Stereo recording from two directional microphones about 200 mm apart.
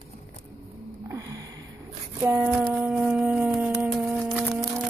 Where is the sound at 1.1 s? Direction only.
20° right (ahead or behind).